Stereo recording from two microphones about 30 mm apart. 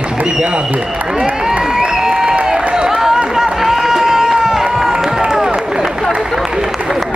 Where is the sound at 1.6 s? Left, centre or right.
Centre.